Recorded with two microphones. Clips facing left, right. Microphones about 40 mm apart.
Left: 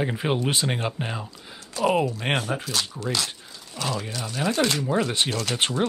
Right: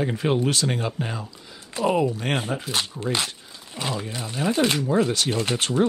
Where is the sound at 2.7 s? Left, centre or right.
Right.